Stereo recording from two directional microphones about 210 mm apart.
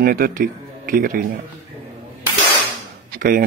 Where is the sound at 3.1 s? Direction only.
40° right (ahead or behind).